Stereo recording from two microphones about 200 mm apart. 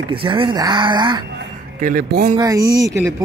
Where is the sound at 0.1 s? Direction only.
25° right (ahead or behind).